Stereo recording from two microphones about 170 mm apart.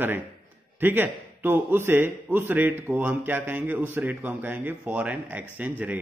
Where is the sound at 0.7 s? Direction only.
10° right (ahead or behind).